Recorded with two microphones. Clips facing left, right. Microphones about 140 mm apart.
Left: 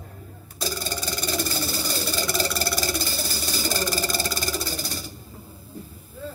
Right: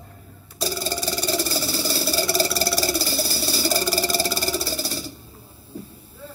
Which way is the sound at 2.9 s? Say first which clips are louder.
Right 4 dB; 35° right (ahead or behind).